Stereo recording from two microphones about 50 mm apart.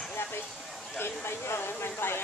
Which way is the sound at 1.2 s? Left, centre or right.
Left.